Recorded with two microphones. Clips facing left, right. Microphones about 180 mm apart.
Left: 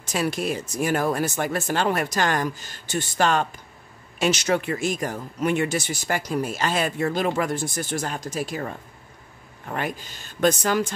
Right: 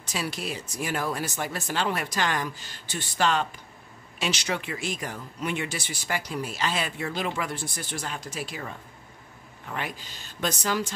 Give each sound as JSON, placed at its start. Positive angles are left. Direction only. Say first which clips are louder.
{"t": 0.0, "sound": "speech", "louder": "left 7 dB", "side_deg": 50}